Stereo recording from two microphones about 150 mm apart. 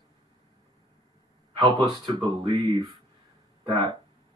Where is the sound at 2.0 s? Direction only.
35° right (ahead or behind).